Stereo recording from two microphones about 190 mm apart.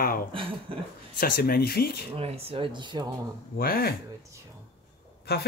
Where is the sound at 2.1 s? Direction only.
30° right (ahead or behind).